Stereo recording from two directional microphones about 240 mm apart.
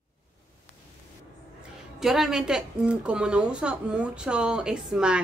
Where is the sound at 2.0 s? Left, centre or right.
Centre.